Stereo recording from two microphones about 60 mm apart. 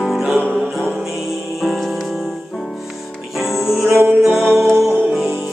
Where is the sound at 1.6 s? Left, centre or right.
Centre.